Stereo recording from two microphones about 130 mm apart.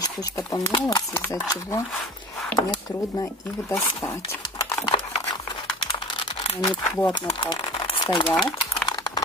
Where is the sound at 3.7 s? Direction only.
25° left (ahead or behind).